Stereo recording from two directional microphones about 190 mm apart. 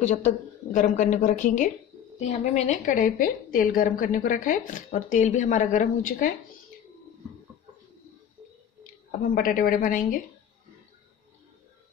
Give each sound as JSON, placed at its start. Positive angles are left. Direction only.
{"t": 0.0, "sound": "a woman's voice", "side_deg": 40}
{"t": 9.3, "sound": "a woman's voice", "side_deg": 45}